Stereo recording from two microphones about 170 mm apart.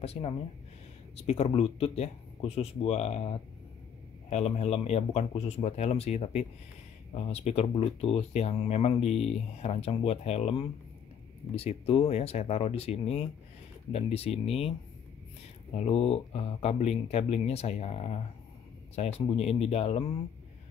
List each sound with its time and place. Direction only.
0.0 s speech: 35° left (ahead or behind)
15.7 s speech: 40° left (ahead or behind)